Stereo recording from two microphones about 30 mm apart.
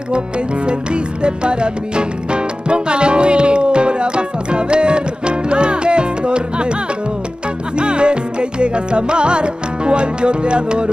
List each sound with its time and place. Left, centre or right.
1.2 s music: right
7.7 s music: right